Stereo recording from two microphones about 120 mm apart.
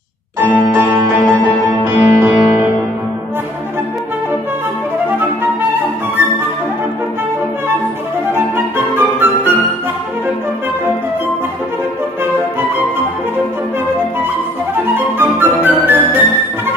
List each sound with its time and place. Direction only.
0.4 s music: 20° right (ahead or behind)
8.3 s music: 20° right (ahead or behind)
15.0 s flute: 20° right (ahead or behind)